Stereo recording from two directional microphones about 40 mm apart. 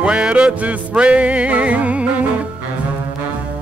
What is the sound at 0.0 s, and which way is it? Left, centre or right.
Music, right.